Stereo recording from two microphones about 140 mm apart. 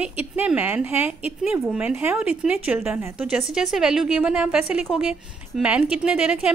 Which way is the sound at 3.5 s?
5° right (ahead or behind).